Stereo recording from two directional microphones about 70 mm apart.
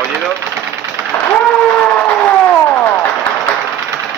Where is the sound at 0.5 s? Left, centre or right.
Right.